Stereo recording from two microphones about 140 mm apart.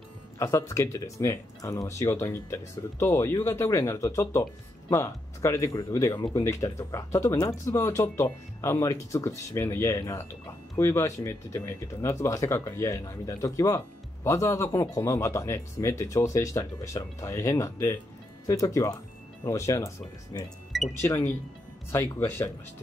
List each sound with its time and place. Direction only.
0.4 s speech: 20° left (ahead or behind)
21.0 s speech: 20° left (ahead or behind)